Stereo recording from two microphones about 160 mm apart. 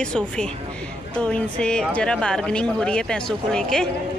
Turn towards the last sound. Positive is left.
turn(degrees=5)  # may be behind; listen again after turning